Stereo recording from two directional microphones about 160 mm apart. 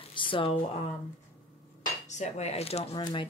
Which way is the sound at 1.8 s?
50° left (ahead or behind).